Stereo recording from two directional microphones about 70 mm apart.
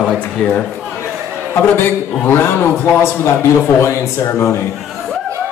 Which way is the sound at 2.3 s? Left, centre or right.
Left.